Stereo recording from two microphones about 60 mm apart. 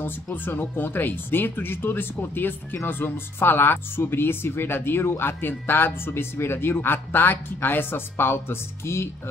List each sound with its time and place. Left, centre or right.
0.0 s speech: left